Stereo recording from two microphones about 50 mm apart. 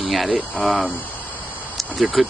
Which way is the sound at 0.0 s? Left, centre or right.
Centre.